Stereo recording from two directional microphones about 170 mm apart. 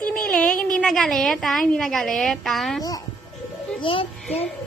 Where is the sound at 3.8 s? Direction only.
30° left (ahead or behind).